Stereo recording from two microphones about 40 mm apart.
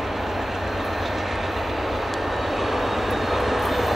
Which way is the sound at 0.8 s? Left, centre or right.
Centre.